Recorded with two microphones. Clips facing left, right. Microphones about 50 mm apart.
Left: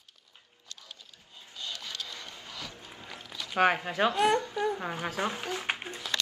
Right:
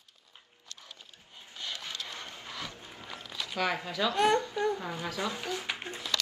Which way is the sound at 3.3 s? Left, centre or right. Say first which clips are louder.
Right 2 dB; right.